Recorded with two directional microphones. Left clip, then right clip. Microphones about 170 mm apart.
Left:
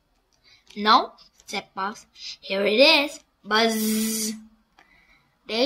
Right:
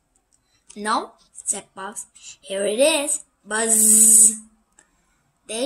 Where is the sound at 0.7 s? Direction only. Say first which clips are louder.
Left 5 dB; 20° left (ahead or behind).